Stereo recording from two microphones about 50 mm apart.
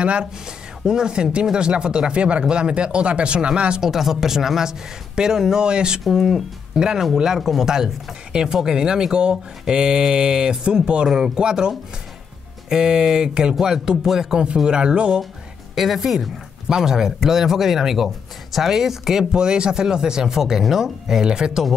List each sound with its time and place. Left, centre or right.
0.0 s speech: right
3.8 s speech: centre
6.0 s speech: centre
15.7 s speech: centre